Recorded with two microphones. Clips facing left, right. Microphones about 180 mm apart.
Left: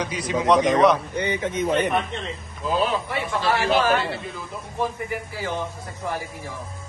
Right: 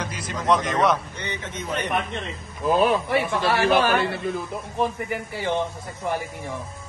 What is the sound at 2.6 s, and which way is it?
A man's voice, 55° right (ahead or behind).